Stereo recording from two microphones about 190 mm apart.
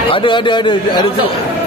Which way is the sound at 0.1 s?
25° left (ahead or behind).